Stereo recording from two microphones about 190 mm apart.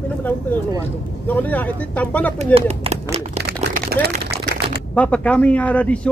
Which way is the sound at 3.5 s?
60° right (ahead or behind).